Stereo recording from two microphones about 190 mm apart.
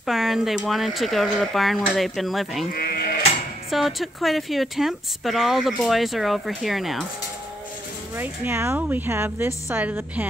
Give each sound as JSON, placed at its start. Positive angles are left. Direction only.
{"t": 0.0, "sound": "speech", "side_deg": 0}
{"t": 2.7, "sound": "sheep", "side_deg": 55}
{"t": 3.7, "sound": "speech", "side_deg": 0}
{"t": 8.2, "sound": "speech", "side_deg": -10}